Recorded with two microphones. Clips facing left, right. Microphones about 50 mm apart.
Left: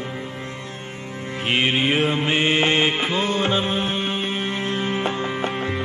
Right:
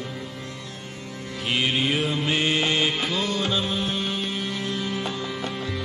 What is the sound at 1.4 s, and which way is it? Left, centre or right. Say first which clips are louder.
Mantra: left 4 dB; left.